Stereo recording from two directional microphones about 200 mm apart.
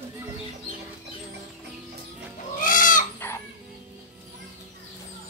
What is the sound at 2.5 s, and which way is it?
Chicken, 40° left (ahead or behind).